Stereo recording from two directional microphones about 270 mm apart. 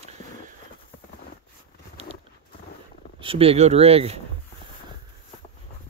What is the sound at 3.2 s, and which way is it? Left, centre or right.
Speech, right.